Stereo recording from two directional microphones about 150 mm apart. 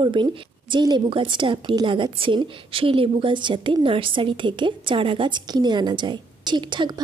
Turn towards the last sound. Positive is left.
turn(degrees=-30)  # may be behind; listen again after turning